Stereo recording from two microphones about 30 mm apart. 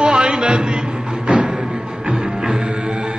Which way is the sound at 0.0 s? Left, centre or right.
Right.